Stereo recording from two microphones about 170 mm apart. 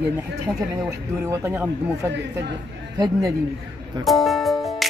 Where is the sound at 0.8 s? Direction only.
15° right (ahead or behind).